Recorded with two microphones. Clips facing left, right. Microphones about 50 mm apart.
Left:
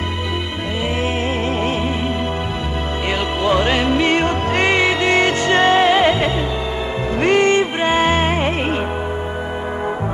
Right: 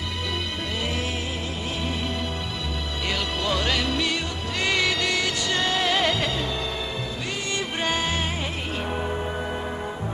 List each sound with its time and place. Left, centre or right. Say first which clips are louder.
3.4 s music: left 10 dB; left
7.2 s music: left 19 dB; left
7.8 s music: left 10 dB; left